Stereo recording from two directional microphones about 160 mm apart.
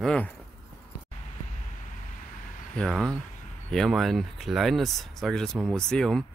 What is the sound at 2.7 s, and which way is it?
Speech, 5° left (ahead or behind).